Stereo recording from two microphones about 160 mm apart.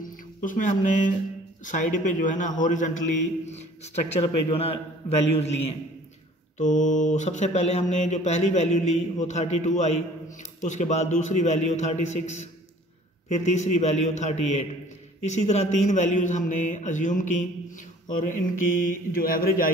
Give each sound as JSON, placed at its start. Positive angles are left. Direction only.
{"t": 0.0, "sound": "speech", "side_deg": 55}
{"t": 1.7, "sound": "mantra", "side_deg": 50}
{"t": 4.2, "sound": "speech", "side_deg": 40}
{"t": 6.6, "sound": "mantra", "side_deg": 50}
{"t": 18.0, "sound": "speech", "side_deg": 55}